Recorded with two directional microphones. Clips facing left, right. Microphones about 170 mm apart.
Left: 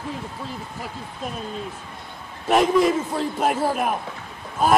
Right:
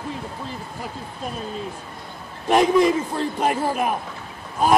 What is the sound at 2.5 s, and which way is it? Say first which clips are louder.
A man's voice: right 1 dB; centre (ahead or behind).